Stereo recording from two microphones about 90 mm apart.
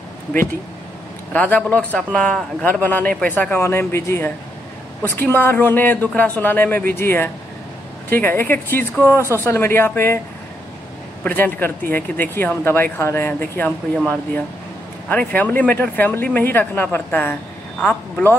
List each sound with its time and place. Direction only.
1.3 s a man's voice: 15° left (ahead or behind)
2.0 s speech: 5° left (ahead or behind); by 10.1 s 25° left (ahead or behind)
11.2 s speech: 20° left (ahead or behind)
15.0 s speech: 20° left (ahead or behind)